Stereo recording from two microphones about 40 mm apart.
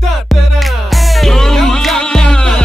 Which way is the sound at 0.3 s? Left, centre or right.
Centre.